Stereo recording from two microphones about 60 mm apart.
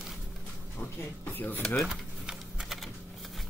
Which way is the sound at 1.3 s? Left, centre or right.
Left.